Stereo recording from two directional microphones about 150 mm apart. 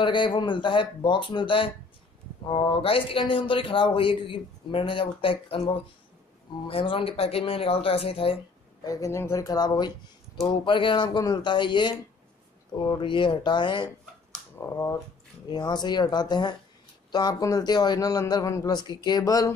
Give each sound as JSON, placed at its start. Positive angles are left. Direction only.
{"t": 0.0, "sound": "speech", "side_deg": 35}
{"t": 8.8, "sound": "a man's voice", "side_deg": 20}
{"t": 14.5, "sound": "a man's voice", "side_deg": 15}